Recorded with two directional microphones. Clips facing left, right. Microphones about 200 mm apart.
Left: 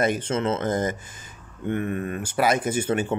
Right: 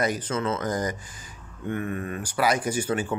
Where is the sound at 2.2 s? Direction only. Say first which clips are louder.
Left 2 dB; 25° left (ahead or behind).